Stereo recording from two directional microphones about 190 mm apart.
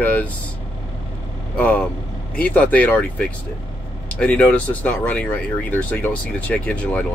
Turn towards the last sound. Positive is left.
turn(degrees=5)  # may be behind; listen again after turning